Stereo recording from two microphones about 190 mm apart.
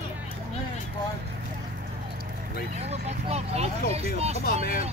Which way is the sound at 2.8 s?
35° right (ahead or behind).